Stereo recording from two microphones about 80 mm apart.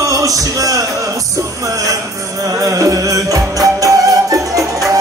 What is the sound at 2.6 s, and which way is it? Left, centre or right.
Music, right.